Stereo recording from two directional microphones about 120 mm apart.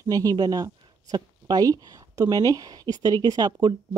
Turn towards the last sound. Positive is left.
turn(degrees=-35)  # may be behind; listen again after turning